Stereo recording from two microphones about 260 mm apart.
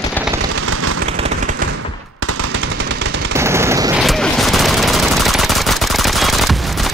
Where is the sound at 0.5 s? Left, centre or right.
Right.